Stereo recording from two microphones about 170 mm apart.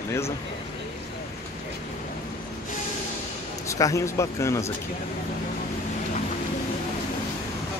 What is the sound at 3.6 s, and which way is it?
A man's voice, 20° left (ahead or behind).